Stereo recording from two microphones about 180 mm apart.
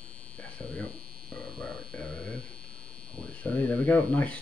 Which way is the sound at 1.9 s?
5° left (ahead or behind).